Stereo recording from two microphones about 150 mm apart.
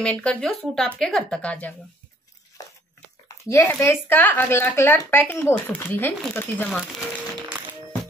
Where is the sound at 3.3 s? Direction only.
20° left (ahead or behind).